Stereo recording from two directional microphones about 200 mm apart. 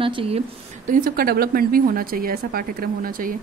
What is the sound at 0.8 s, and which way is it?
Speech, 45° right (ahead or behind).